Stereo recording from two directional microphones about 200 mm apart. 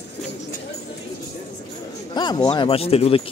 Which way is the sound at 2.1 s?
20° left (ahead or behind).